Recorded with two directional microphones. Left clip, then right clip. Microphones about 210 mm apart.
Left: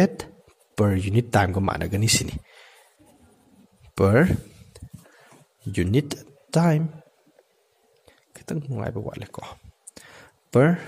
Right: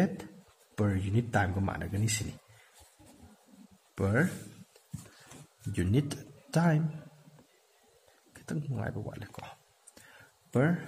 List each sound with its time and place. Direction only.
0.7 s speech: 40° left (ahead or behind)
3.9 s speech: 40° left (ahead or behind)
5.7 s speech: 35° left (ahead or behind)
8.3 s speech: 30° left (ahead or behind)
10.5 s speech: 45° left (ahead or behind)